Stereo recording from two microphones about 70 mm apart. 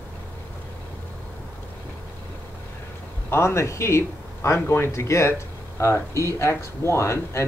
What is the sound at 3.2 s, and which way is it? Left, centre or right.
Speech, left.